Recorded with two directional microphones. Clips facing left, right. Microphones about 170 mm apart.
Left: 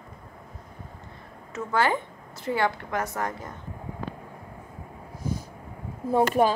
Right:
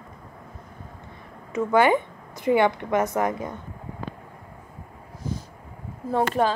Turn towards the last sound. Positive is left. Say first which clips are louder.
# left 1 dB
turn(degrees=10)  # may be behind; listen again after turning